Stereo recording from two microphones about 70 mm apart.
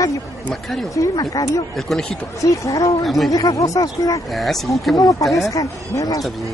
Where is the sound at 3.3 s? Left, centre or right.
Left.